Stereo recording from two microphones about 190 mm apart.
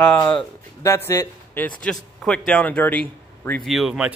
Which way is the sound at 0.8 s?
15° left (ahead or behind).